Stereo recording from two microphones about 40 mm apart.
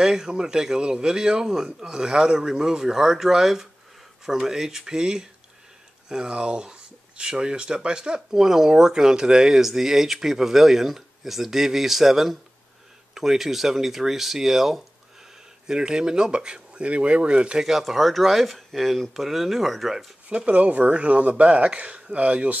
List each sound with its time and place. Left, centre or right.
0.0 s speech: centre
17.6 s speech: centre
20.2 s speech: right